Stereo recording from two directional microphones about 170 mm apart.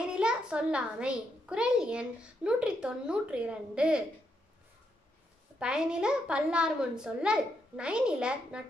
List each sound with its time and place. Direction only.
0.1 s a child's voice: 5° right (ahead or behind)
5.6 s a child's voice: 5° right (ahead or behind)